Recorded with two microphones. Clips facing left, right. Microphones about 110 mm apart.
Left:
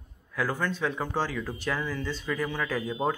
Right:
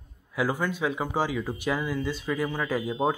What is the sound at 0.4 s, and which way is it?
Speech, 15° right (ahead or behind).